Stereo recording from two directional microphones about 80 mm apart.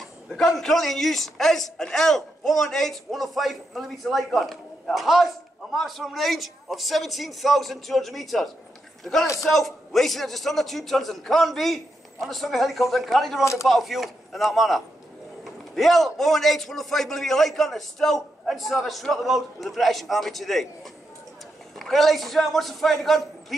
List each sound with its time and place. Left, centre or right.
0.0 s a man's voice: centre
13.4 s speech: left
13.7 s a man's voice: centre